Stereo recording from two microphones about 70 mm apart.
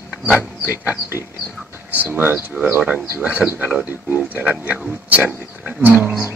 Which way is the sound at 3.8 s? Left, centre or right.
Right.